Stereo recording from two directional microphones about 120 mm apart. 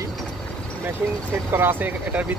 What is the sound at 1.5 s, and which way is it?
Speech, 20° right (ahead or behind).